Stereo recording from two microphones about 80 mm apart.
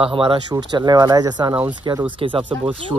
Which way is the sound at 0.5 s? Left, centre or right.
Right.